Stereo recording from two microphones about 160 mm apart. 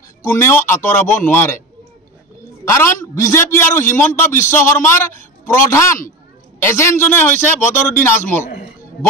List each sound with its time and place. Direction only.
0.2 s a man's voice: 20° left (ahead or behind)
2.6 s a man's voice: 15° left (ahead or behind)